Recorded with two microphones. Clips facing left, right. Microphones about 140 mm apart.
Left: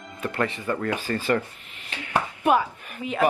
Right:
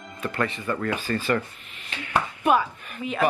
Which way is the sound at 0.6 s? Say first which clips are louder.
Left 1 dB; 35° left (ahead or behind).